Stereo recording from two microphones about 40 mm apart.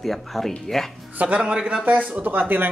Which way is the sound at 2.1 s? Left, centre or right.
Right.